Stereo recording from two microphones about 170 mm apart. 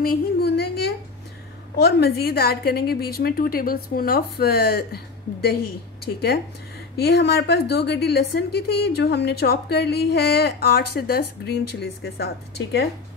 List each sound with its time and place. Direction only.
0.0 s a sound: 65° left (ahead or behind)
1.8 s a woman's voice: 70° left (ahead or behind)
7.0 s a woman's voice: 75° left (ahead or behind)